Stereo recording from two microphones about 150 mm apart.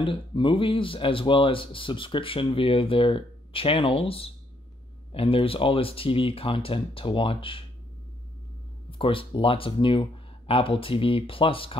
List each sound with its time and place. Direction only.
0.0 s speech: 35° left (ahead or behind)
8.9 s speech: 35° left (ahead or behind)